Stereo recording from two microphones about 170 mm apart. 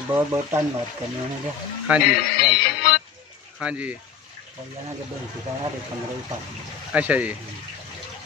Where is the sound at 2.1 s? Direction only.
65° left (ahead or behind).